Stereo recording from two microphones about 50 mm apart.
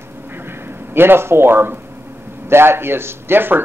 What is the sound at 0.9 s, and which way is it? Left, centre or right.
A man's voice, right.